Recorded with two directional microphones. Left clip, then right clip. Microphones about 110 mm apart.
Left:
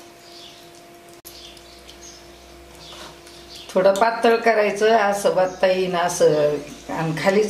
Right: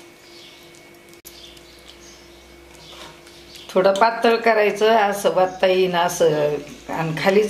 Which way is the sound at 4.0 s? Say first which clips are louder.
Right 1 dB; 15° right (ahead or behind).